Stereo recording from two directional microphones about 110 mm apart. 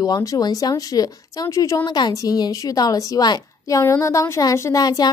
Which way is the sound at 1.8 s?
40° left (ahead or behind).